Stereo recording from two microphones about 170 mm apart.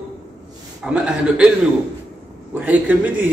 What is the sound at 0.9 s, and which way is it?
Speech, 5° right (ahead or behind).